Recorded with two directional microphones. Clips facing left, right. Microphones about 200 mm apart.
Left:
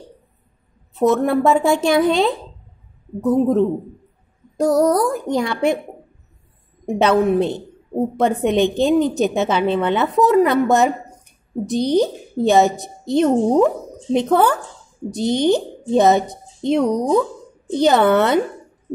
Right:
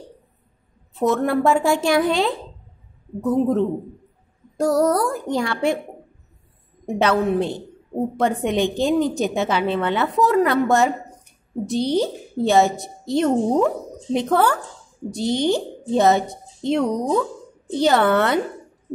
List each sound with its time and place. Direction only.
0.9 s a woman's voice: 20° left (ahead or behind)
7.0 s a woman's voice: 20° left (ahead or behind)